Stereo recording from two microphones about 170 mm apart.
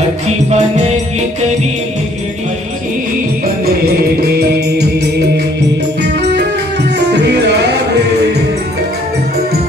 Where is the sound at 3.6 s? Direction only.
65° right (ahead or behind); by 8.4 s 80° right.